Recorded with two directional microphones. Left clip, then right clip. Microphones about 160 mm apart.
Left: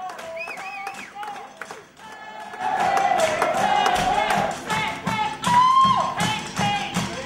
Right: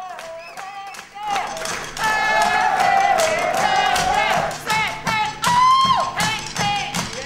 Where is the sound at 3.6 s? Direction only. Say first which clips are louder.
Right 2 dB; 30° right (ahead or behind).